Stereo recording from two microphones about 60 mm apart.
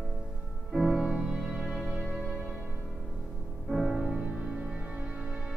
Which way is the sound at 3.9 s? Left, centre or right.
Centre.